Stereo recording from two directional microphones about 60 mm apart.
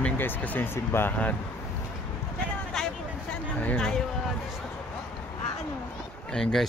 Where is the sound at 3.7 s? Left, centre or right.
Centre.